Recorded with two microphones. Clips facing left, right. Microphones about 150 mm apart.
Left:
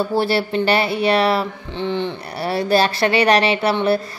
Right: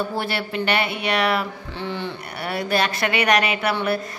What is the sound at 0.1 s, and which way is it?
Speech, 30° left (ahead or behind).